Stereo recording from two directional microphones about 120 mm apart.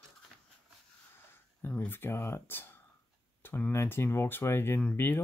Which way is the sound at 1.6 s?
15° left (ahead or behind).